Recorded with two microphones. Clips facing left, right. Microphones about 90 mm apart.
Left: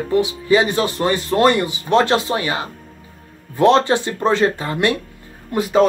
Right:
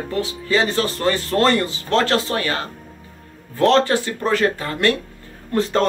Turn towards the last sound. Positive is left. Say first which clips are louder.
# left 1 dB
turn(degrees=10)  # may be behind; listen again after turning